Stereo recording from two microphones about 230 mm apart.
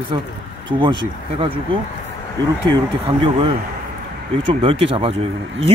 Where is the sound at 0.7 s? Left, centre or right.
Centre.